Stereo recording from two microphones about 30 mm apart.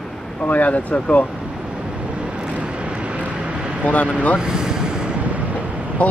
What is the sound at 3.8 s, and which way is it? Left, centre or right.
Speech, left.